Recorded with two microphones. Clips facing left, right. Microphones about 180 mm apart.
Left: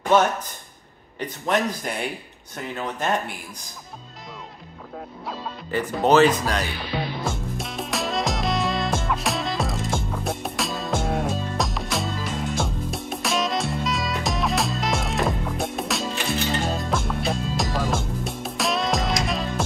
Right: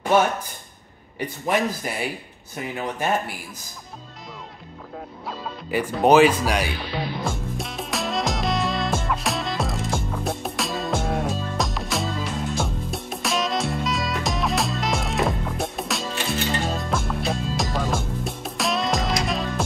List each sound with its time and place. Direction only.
1.2 s speech: 10° right (ahead or behind)
5.7 s speech: 10° right (ahead or behind)
7.2 s music: centre (ahead or behind)